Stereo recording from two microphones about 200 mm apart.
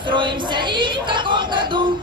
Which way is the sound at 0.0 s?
25° right (ahead or behind).